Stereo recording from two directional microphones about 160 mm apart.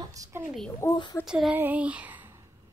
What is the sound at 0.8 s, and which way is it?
Speech, 15° left (ahead or behind).